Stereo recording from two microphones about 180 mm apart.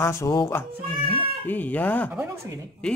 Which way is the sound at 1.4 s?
10° left (ahead or behind).